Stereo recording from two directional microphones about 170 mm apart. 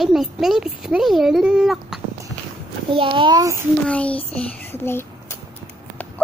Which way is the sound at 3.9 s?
10° left (ahead or behind).